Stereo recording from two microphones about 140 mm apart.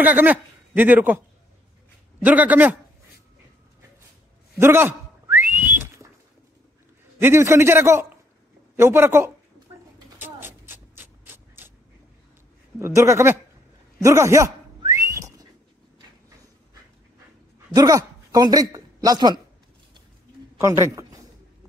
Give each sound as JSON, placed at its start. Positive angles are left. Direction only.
{"t": 0.0, "sound": "speech", "side_deg": -10}
{"t": 2.2, "sound": "speech", "side_deg": -10}
{"t": 4.6, "sound": "whistling", "side_deg": -15}
{"t": 7.2, "sound": "a man's voice", "side_deg": -15}
{"t": 10.1, "sound": "mechanisms", "side_deg": -15}
{"t": 12.7, "sound": "speech", "side_deg": -20}
{"t": 15.0, "sound": "whistling", "side_deg": -20}
{"t": 17.7, "sound": "a woman's voice", "side_deg": -25}
{"t": 20.5, "sound": "a man's voice", "side_deg": -20}